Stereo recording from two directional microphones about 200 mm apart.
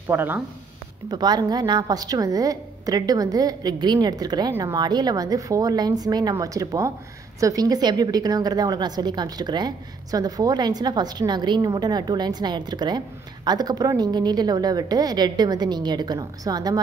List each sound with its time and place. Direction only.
0.1 s speech: 10° right (ahead or behind)
1.1 s a woman's voice: 20° right (ahead or behind)